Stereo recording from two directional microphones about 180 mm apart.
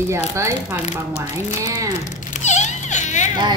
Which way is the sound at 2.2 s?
40° left (ahead or behind).